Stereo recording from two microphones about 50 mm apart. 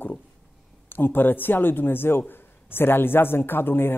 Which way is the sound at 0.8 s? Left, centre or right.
Left.